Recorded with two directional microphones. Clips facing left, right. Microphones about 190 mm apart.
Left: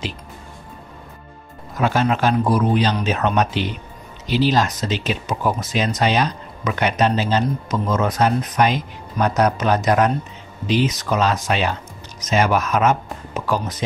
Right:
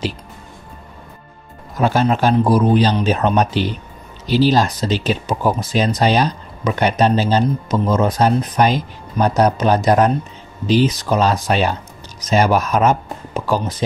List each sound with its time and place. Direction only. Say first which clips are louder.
1.8 s speech: right 3 dB; 35° right (ahead or behind)